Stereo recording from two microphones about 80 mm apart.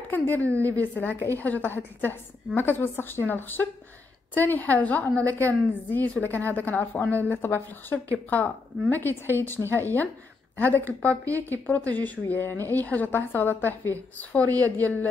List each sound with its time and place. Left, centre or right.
0.1 s a woman's voice: left